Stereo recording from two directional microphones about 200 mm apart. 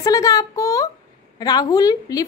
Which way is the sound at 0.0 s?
15° left (ahead or behind).